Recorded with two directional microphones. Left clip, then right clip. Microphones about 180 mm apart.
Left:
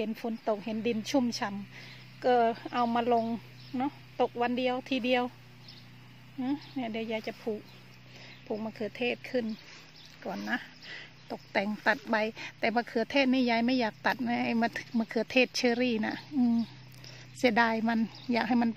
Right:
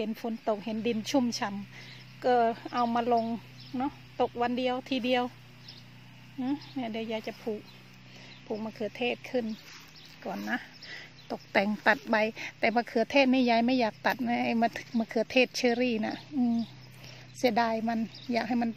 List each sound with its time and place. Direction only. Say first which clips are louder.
0.0 s speech: right 1 dB; centre (ahead or behind)
6.4 s speech: even; centre (ahead or behind)
11.2 s speech: right 4 dB; 15° right (ahead or behind); by 16.3 s 5° left (ahead or behind)
17.4 s a woman's voice: left 1 dB; 15° left (ahead or behind)